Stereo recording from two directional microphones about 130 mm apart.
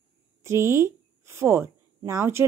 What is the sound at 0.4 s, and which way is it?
A woman's voice, 20° right (ahead or behind).